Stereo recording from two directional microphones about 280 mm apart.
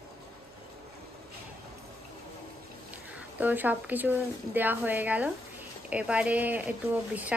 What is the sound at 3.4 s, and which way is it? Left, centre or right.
A woman's voice, centre.